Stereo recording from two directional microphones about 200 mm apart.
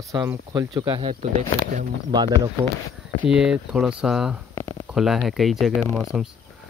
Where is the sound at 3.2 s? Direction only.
5° right (ahead or behind).